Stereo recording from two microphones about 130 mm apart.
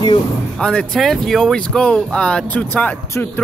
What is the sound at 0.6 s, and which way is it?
Speech, 5° left (ahead or behind).